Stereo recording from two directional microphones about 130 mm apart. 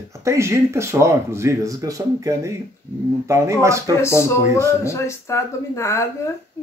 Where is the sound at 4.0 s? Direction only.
20° left (ahead or behind).